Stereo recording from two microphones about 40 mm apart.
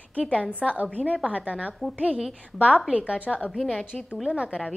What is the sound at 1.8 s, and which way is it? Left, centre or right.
Speech, centre.